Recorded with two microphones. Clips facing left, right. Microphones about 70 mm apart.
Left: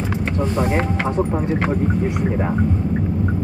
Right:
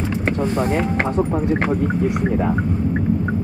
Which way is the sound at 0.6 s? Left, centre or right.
Left.